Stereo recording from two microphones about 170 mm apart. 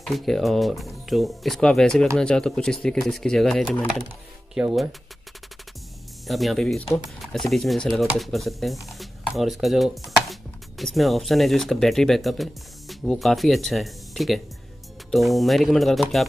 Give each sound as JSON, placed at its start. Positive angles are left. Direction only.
{"t": 0.0, "sound": "speech", "side_deg": 0}
{"t": 6.2, "sound": "speech", "side_deg": 0}